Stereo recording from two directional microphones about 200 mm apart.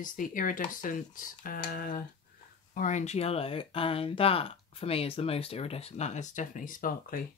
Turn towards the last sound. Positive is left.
turn(degrees=45)  # may be behind; listen again after turning